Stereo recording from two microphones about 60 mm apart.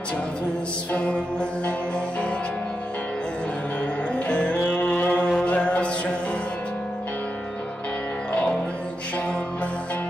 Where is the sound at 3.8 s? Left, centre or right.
Centre.